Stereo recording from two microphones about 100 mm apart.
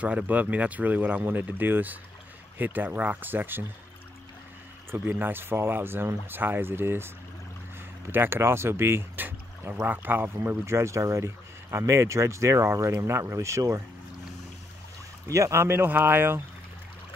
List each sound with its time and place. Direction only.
0.0 s speech: 15° right (ahead or behind)
4.9 s speech: 20° right (ahead or behind)
8.1 s speech: 20° right (ahead or behind)
15.2 s speech: 30° right (ahead or behind)